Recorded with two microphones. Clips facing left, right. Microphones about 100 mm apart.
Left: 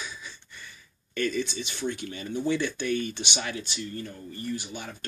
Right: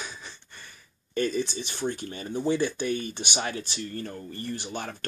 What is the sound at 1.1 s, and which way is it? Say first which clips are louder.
Speech: right 2 dB; 35° right (ahead or behind).